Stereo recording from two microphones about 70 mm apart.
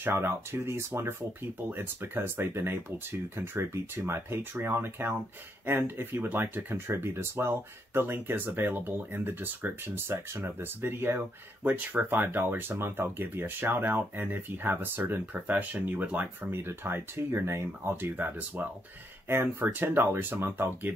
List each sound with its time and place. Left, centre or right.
0.0 s speech: right